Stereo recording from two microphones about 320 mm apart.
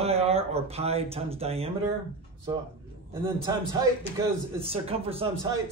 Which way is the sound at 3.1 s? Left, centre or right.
Centre.